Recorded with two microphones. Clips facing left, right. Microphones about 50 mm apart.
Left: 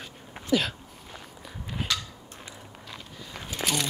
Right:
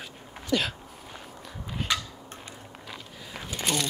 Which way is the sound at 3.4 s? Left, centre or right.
Centre.